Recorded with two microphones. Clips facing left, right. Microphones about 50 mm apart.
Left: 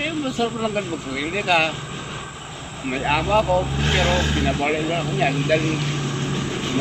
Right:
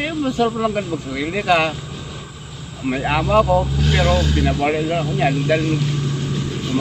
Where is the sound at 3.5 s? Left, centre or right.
Left.